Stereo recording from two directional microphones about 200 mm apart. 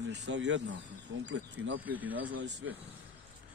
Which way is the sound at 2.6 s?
80° right.